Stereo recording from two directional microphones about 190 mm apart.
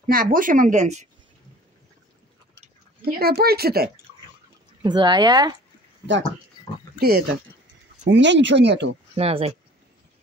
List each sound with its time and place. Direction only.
0.0 s speech: 50° right (ahead or behind)
3.1 s speech: 55° right (ahead or behind)
4.8 s speech: 25° right (ahead or behind)
7.0 s speech: 55° right (ahead or behind)
8.1 s speech: 70° right (ahead or behind)
9.1 s speech: 30° right (ahead or behind)